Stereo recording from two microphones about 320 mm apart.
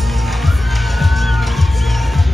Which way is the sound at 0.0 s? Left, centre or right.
Centre.